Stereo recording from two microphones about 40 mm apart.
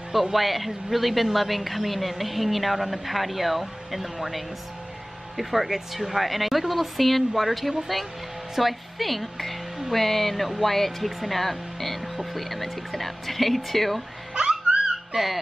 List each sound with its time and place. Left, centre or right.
0.1 s a woman's voice: centre
5.4 s a woman's voice: centre
14.3 s music: centre